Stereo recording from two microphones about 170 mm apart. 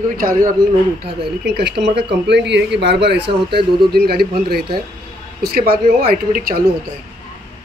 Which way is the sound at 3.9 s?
65° right (ahead or behind).